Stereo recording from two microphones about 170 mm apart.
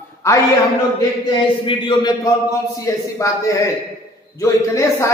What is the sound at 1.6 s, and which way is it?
A man's voice, 30° left (ahead or behind).